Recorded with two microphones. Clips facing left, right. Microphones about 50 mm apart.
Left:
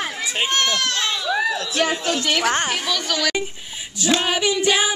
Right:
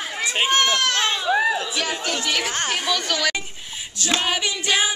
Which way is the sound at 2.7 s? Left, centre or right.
Centre.